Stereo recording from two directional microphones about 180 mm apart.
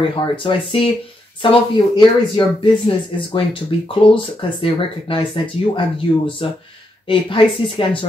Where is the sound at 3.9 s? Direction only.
30° left (ahead or behind).